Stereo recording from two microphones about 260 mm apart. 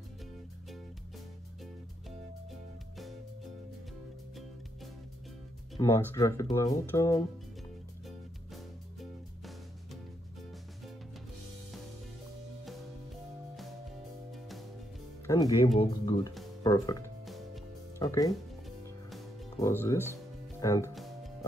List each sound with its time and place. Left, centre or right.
1.6 s music: centre
5.8 s speech: centre
9.4 s music: centre
15.2 s speech: centre
17.2 s music: centre
17.9 s speech: centre
19.6 s speech: centre